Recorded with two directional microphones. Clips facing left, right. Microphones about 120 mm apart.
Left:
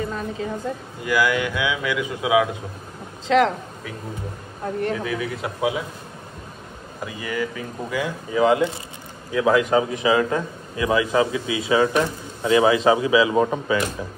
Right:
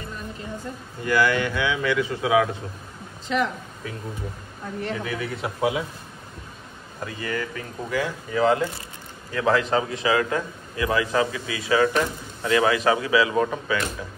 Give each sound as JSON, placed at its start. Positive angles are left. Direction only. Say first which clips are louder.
{"t": 0.7, "sound": "speech", "louder": "left 7 dB", "side_deg": 90}
{"t": 1.0, "sound": "speech", "louder": "even", "side_deg": 10}
{"t": 3.3, "sound": "speech", "louder": "left 7 dB", "side_deg": 90}
{"t": 4.9, "sound": "a man's voice", "louder": "left 3 dB", "side_deg": 0}
{"t": 7.0, "sound": "a man's voice", "louder": "left 2 dB", "side_deg": 15}